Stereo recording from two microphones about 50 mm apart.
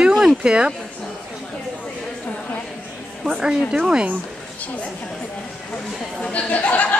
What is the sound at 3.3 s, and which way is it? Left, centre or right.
Speech, centre.